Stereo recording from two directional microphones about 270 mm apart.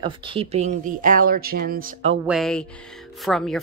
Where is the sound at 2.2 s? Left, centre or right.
Centre.